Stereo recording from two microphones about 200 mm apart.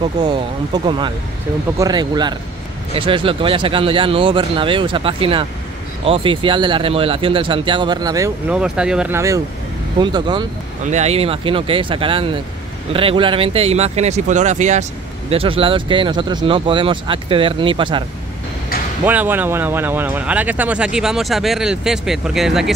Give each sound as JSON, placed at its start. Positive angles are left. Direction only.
{"t": 0.2, "sound": "speech", "side_deg": -20}
{"t": 1.8, "sound": "speech", "side_deg": -20}
{"t": 8.5, "sound": "speech", "side_deg": -5}
{"t": 10.9, "sound": "speech", "side_deg": -35}
{"t": 19.0, "sound": "speech", "side_deg": -10}